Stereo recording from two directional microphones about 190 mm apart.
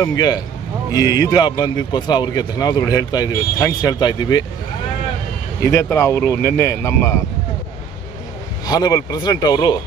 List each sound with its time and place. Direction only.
0.0 s speech: 20° left (ahead or behind)
5.6 s speech: 15° left (ahead or behind)
8.6 s speech: 20° left (ahead or behind)